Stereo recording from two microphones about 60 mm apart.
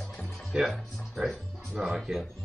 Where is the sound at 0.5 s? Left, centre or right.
Centre.